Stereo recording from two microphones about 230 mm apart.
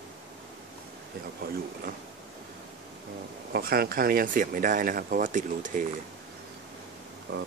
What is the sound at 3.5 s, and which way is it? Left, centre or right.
Speech, right.